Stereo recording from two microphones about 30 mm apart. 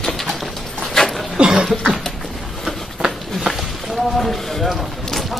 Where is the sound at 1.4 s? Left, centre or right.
Right.